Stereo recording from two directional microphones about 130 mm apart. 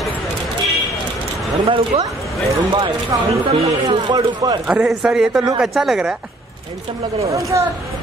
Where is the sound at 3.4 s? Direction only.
40° right (ahead or behind).